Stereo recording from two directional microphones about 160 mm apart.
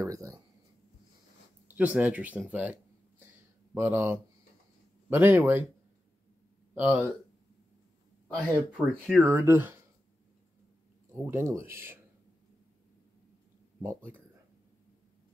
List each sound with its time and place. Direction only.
0.0 s speech: 20° right (ahead or behind)
1.7 s speech: 10° right (ahead or behind)
6.7 s speech: 10° right (ahead or behind)
8.5 s speech: 10° left (ahead or behind)
9.2 s speech: 15° right (ahead or behind)
11.2 s speech: 15° right (ahead or behind)
13.7 s speech: 15° right (ahead or behind)